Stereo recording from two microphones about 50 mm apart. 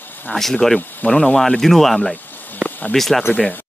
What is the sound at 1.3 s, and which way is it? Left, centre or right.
Speech, centre.